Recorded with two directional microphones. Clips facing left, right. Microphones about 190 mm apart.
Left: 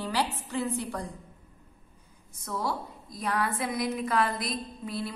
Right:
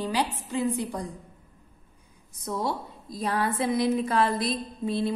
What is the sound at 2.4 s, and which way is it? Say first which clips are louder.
A woman's voice: right 3 dB; 20° right (ahead or behind).